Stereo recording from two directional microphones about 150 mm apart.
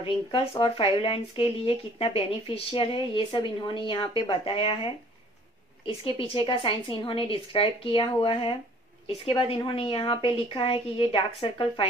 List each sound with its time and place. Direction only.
0.0 s speech: 40° left (ahead or behind)